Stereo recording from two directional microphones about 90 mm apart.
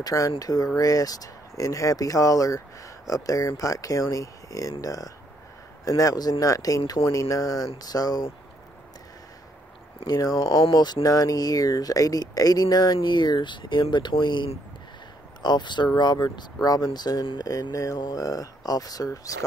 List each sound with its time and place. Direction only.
0.0 s speech: 35° left (ahead or behind)
10.0 s speech: 45° left (ahead or behind)
17.5 s speech: 40° left (ahead or behind)